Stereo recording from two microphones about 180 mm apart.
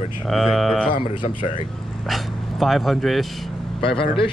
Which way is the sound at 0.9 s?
30° left (ahead or behind).